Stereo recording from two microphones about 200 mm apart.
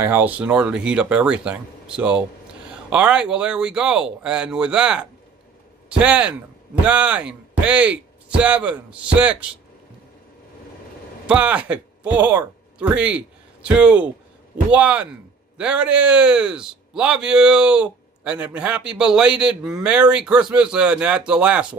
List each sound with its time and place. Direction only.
0.0 s a man's voice: 10° right (ahead or behind)
11.2 s a man's voice: 5° right (ahead or behind)